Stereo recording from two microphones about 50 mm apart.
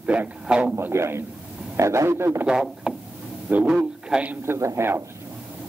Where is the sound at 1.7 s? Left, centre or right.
Right.